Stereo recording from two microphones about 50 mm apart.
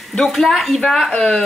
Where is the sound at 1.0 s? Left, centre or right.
Centre.